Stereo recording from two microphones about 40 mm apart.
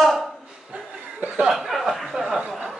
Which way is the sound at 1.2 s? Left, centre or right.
Right.